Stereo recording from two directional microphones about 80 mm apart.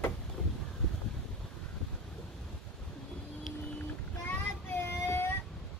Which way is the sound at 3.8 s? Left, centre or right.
Left.